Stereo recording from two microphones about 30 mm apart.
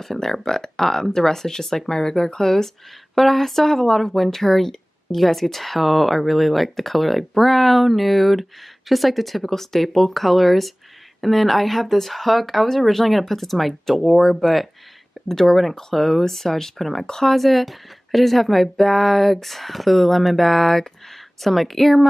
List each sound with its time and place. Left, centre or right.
0.0 s speech: centre
17.0 s speech: centre
17.3 s speech: centre